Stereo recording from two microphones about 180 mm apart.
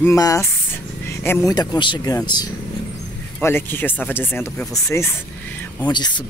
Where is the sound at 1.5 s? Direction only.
20° left (ahead or behind).